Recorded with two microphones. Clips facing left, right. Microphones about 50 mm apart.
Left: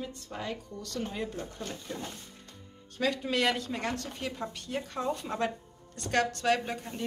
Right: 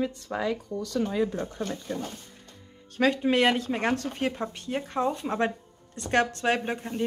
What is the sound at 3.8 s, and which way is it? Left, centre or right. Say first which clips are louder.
Speech: right 8 dB; right.